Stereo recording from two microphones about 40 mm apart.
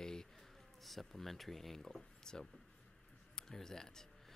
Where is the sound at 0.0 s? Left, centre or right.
Centre.